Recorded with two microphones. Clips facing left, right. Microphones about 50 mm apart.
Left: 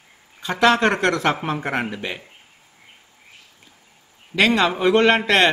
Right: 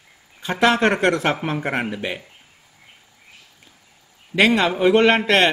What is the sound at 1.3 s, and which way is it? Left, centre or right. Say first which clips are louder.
Speech: right 1 dB; centre.